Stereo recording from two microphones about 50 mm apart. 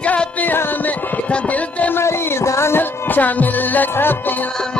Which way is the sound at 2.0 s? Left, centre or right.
Left.